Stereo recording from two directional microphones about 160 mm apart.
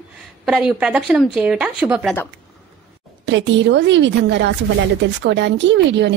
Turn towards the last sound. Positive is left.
turn(degrees=-90)